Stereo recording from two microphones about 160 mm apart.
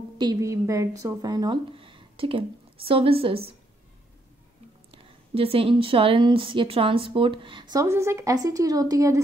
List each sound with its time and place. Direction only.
0.2 s a woman's voice: 20° right (ahead or behind)
4.9 s a woman's voice: 35° right (ahead or behind); by 9.2 s 20° right (ahead or behind)